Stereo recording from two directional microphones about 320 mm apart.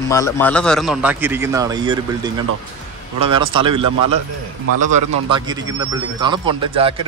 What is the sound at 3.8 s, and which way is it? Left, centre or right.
Speech, right.